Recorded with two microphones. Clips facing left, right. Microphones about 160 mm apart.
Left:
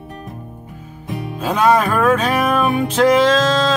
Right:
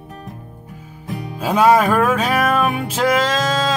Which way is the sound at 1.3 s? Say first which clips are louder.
Right 1 dB; 10° right (ahead or behind).